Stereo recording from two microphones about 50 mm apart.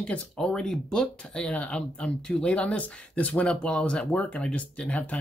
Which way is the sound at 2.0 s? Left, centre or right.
Centre.